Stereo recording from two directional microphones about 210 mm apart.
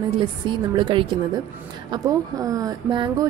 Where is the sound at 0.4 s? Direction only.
20° right (ahead or behind).